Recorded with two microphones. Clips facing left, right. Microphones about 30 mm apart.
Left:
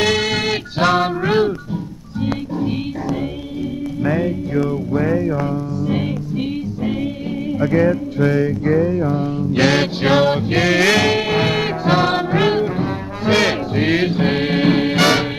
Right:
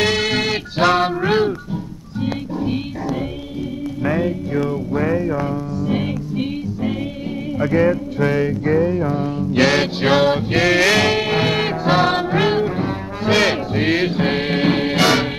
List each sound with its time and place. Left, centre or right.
0.0 s music: centre